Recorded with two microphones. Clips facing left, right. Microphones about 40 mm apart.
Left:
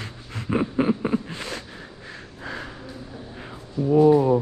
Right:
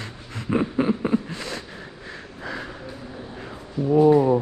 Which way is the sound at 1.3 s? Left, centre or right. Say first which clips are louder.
Right 1 dB; left.